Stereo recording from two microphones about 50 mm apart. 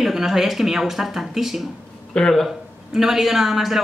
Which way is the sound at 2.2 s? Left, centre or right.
Centre.